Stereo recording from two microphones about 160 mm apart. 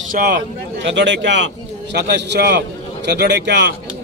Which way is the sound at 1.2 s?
90° right.